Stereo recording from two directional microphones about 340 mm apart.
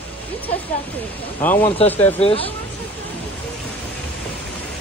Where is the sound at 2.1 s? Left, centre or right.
Centre.